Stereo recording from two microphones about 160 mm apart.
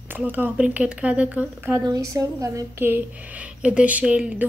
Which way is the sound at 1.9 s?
20° right (ahead or behind).